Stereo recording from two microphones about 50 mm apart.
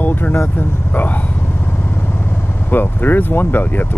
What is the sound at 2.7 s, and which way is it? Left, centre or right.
Speech, left.